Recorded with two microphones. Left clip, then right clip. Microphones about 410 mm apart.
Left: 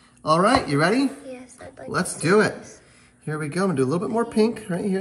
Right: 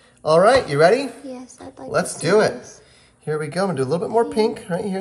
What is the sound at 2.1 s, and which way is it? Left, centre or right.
Speech, right.